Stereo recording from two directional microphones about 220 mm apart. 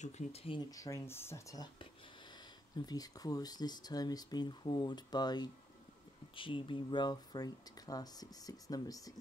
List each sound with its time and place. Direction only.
0.0 s speech: 25° left (ahead or behind)
2.9 s speech: 15° left (ahead or behind)